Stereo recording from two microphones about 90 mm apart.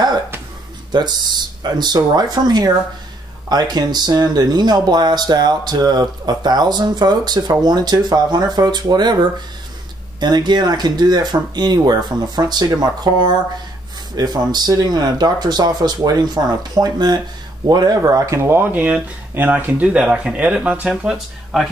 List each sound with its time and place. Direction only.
0.9 s speech: 55° right (ahead or behind)
10.2 s speech: 55° right (ahead or behind); by 21.6 s 5° right (ahead or behind)